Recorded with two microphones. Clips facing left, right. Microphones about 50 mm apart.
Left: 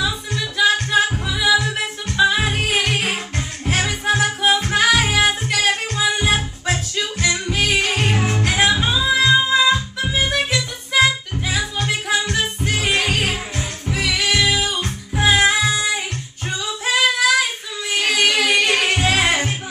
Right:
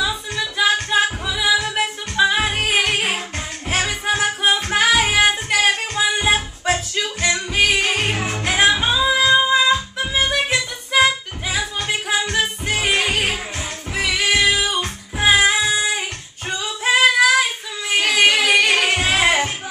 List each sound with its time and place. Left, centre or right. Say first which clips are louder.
0.0 s music: right 1 dB; centre
16.4 s child singing: right 2 dB; centre
18.1 s music: right 2 dB; centre